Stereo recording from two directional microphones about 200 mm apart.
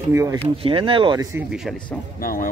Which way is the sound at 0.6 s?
25° right (ahead or behind).